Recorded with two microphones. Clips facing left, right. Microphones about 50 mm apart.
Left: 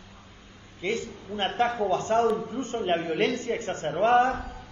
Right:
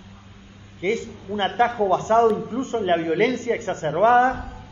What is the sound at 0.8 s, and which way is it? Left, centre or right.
A man's voice, right.